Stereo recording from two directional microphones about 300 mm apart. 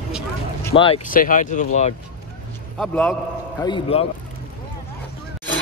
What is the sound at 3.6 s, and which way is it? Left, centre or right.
Speech, centre.